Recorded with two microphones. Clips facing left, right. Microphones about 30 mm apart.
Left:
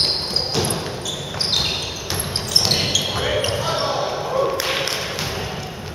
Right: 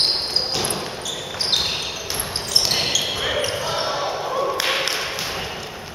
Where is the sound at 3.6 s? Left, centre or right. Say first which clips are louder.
Left 2 dB; centre.